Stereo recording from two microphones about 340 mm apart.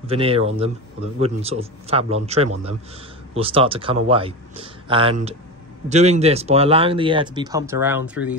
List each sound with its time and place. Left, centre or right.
0.0 s a man's voice: centre